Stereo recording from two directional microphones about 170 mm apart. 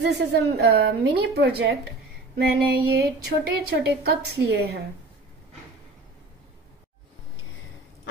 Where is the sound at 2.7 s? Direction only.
70° right (ahead or behind).